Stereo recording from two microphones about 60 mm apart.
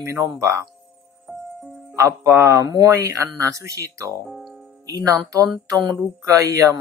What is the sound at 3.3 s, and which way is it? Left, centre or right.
Speech, right.